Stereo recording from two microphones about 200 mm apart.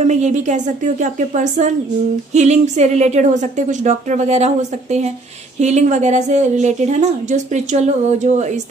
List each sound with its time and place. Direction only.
0.0 s a woman's voice: 35° right (ahead or behind)